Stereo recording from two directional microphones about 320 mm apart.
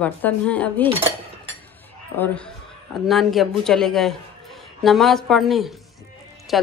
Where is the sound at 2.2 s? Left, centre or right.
Centre.